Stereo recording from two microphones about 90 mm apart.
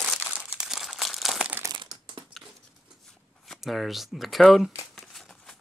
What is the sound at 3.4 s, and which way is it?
Speech, centre (ahead or behind).